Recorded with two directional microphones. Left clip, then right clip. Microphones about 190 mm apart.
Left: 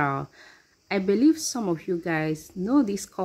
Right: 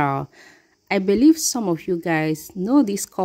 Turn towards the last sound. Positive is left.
turn(degrees=-40)  # may be behind; listen again after turning